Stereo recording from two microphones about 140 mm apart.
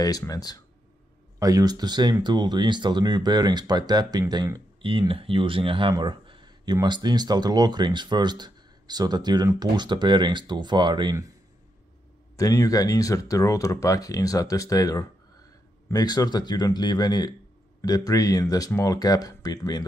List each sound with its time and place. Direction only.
0.3 s speech: 30° left (ahead or behind)
1.4 s speech: 25° right (ahead or behind)
12.4 s speech: 25° left (ahead or behind)